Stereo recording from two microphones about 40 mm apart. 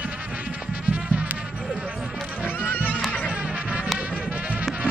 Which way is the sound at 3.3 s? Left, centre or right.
Right.